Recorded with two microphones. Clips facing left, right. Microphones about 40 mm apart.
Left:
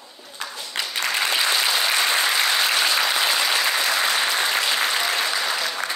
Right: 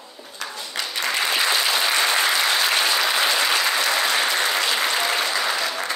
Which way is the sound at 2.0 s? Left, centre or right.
Centre.